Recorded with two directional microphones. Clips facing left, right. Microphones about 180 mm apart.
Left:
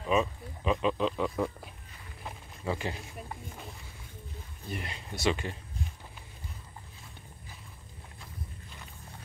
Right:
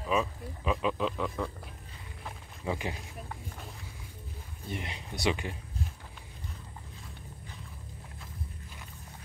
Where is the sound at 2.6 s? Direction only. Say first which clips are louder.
Left 1 dB; 15° right (ahead or behind).